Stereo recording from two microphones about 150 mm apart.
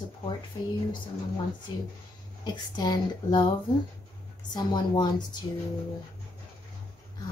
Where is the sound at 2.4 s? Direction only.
30° left (ahead or behind).